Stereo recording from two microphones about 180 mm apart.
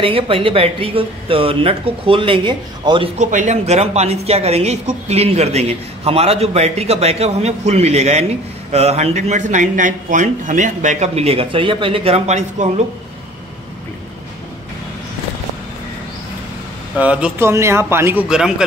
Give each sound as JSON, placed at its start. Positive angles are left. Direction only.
{"t": 0.0, "sound": "a woman's voice", "side_deg": -30}
{"t": 3.2, "sound": "a woman's voice", "side_deg": -45}
{"t": 17.0, "sound": "a man's voice", "side_deg": -5}